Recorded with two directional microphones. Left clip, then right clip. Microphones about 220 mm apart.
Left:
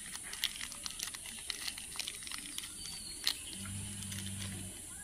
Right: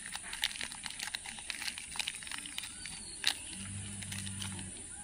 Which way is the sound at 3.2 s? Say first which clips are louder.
Right 3 dB; 15° right (ahead or behind).